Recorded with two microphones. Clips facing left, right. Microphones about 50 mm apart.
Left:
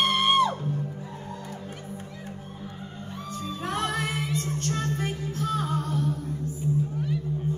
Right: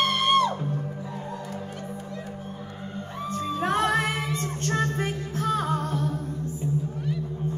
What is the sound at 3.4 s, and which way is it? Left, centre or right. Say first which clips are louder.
Music: right 5 dB; right.